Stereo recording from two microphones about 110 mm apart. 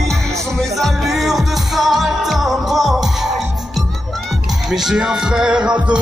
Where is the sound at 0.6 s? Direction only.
Centre (ahead or behind).